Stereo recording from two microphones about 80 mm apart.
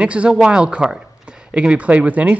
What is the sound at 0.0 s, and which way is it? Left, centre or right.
Speech, centre.